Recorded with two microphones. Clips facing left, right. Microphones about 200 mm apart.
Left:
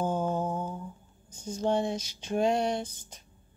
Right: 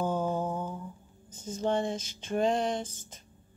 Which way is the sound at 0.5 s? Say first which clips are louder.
Left 1 dB; 15° left (ahead or behind).